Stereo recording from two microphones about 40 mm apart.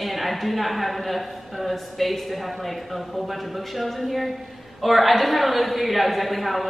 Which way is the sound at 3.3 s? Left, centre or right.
Centre.